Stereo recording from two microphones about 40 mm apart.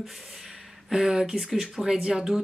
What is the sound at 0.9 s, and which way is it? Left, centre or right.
Speech, centre.